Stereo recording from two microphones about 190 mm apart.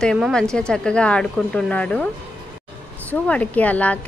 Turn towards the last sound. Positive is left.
turn(degrees=10)  # may be behind; listen again after turning